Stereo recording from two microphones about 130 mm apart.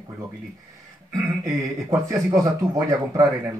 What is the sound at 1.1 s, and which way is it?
Speech, 25° right (ahead or behind).